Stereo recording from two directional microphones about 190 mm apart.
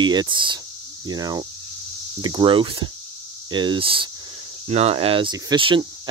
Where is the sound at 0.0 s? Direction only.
25° right (ahead or behind).